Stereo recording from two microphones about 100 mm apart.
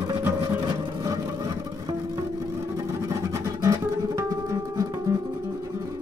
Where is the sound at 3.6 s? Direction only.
30° right (ahead or behind).